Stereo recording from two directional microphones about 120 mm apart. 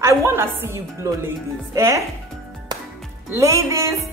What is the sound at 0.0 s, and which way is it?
A woman's voice, 25° right (ahead or behind).